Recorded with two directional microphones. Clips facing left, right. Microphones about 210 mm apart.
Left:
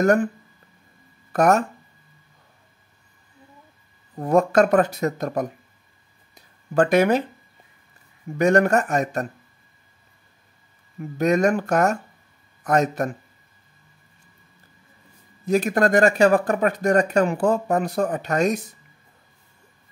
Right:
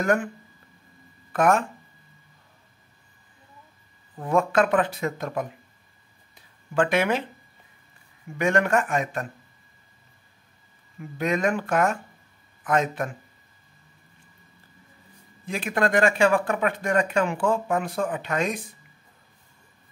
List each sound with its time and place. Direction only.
0.0 s speech: 40° left (ahead or behind)
1.3 s speech: 40° left (ahead or behind)
4.1 s speech: 40° left (ahead or behind)
6.3 s a sound: 40° left (ahead or behind)
8.4 s speech: 40° left (ahead or behind)
11.0 s speech: 45° left (ahead or behind)
15.4 s speech: 40° left (ahead or behind)